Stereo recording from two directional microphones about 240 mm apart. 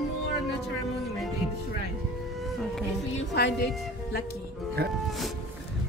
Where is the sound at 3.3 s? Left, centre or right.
Left.